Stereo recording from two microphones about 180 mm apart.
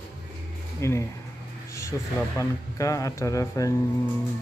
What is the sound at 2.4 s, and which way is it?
Speech, 20° left (ahead or behind).